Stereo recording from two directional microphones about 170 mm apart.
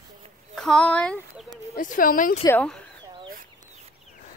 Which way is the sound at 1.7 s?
50° left (ahead or behind).